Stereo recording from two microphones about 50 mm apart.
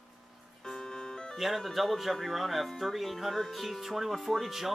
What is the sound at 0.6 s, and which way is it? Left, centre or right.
Music, centre.